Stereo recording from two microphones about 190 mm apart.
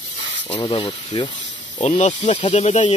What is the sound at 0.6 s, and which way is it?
Speech, 30° left (ahead or behind).